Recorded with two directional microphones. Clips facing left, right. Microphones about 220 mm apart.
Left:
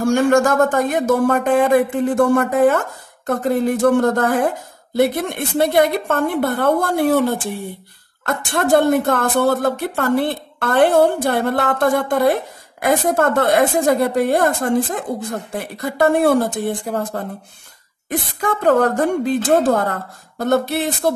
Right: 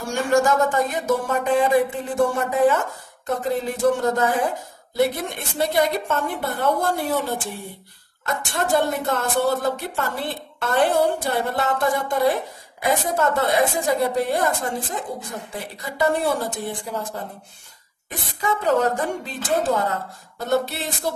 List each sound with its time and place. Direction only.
0.0 s speech: 50° left (ahead or behind)
18.4 s speech: 55° left (ahead or behind)